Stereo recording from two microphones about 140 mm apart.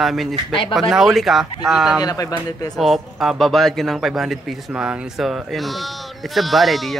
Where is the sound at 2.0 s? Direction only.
25° left (ahead or behind).